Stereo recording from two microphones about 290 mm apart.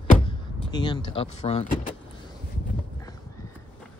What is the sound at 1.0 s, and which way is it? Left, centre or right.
Speech, centre.